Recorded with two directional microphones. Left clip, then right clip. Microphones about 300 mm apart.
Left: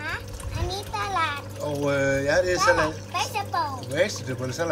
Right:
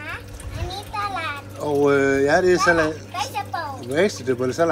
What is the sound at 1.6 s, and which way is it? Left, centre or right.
A child's voice, centre.